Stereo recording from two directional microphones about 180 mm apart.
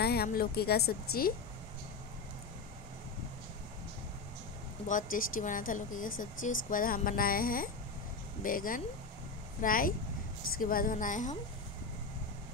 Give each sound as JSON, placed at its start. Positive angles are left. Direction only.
{"t": 0.0, "sound": "a woman's voice", "side_deg": 60}
{"t": 4.8, "sound": "speech", "side_deg": 50}